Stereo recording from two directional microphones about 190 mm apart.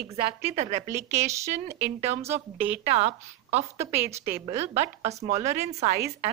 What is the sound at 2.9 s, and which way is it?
A woman's voice, 35° right (ahead or behind).